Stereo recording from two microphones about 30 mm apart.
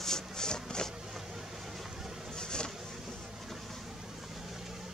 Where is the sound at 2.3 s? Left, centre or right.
Left.